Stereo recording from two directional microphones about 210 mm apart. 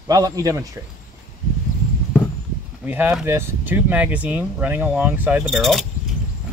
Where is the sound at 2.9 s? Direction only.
10° right (ahead or behind).